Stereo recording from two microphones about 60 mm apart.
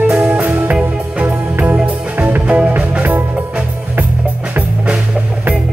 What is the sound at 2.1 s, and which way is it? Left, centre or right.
Music, right.